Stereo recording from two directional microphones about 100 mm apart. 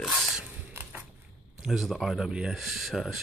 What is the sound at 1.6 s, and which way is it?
Speech, centre (ahead or behind).